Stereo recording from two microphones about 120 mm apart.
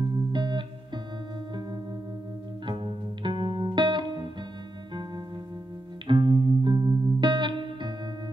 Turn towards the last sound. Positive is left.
turn(degrees=-40)  # may be behind; listen again after turning